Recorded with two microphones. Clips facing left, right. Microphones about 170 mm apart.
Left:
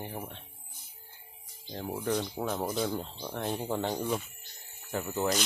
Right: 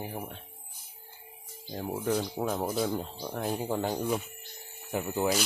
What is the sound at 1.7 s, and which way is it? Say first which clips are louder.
Speech: right 2 dB; 10° right (ahead or behind).